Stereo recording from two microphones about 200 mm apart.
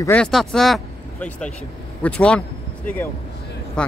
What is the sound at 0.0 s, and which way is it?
Speech, 5° left (ahead or behind).